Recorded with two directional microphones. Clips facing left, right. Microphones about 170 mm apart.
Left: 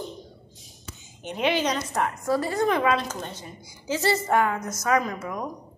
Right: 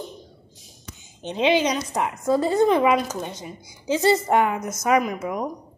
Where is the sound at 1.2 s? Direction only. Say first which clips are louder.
Right 4 dB; 20° right (ahead or behind).